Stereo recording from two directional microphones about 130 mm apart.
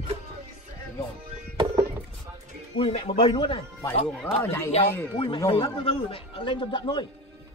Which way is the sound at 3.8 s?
15° left (ahead or behind).